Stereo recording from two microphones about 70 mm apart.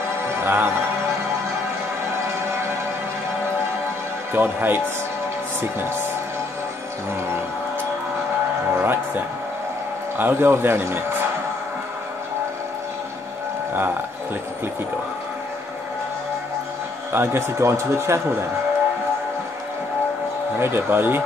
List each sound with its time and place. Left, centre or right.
0.4 s music: right
4.3 s speech: right
8.7 s music: right
10.1 s a man's voice: right
17.1 s a man's voice: right
20.5 s a man's voice: right